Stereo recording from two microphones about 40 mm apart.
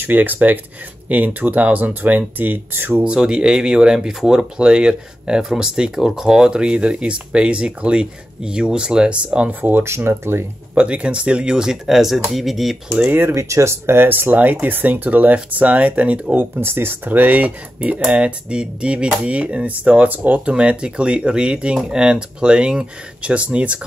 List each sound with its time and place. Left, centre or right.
0.0 s speech: right
3.1 s speech: right
9.5 s speech: right
9.8 s speech: right
10.7 s speech: right
11.8 s speech: centre
12.9 s speech: right
16.5 s speech: right
17.1 s speech: right
18.0 s speech: right
20.1 s speech: right
20.4 s speech: right